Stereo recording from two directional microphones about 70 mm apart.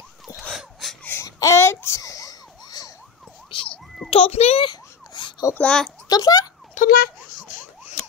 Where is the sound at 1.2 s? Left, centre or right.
Left.